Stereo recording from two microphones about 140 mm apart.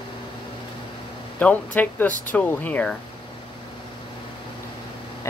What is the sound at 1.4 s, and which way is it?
Speech, 10° left (ahead or behind).